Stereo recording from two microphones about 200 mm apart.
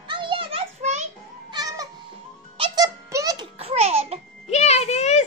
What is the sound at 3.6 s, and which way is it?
Babbling, 30° right (ahead or behind).